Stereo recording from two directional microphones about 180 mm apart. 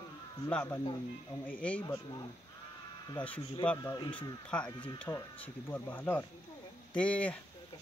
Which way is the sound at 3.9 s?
25° left (ahead or behind).